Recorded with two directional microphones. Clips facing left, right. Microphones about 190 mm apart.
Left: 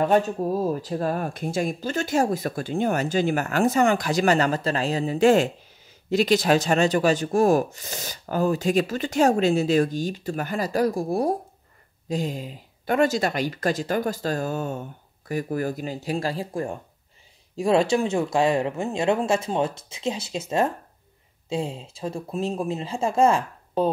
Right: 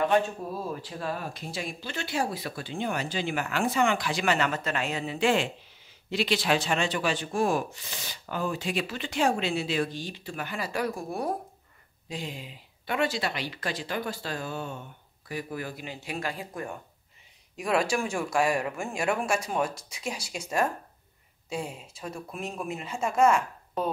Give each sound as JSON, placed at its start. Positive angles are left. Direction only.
{"t": 0.0, "sound": "speech", "side_deg": 40}